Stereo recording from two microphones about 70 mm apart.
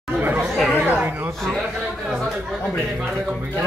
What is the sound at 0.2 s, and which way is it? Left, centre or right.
Chatter, right.